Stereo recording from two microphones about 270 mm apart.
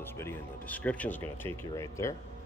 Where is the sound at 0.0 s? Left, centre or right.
Centre.